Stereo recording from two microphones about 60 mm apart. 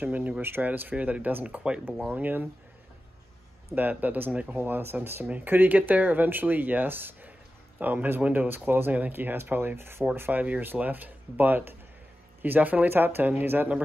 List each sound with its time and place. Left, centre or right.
0.0 s speech: right
3.7 s speech: right
4.6 s speech: right